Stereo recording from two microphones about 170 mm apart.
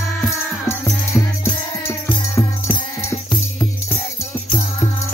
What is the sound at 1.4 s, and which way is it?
Music, 15° left (ahead or behind).